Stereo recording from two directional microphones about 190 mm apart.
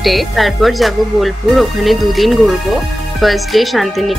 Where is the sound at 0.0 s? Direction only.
Centre (ahead or behind).